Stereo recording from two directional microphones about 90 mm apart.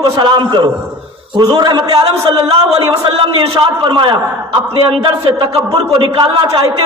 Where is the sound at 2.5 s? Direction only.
90° right.